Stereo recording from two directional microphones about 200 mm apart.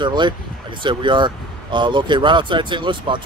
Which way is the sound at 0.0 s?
20° right (ahead or behind).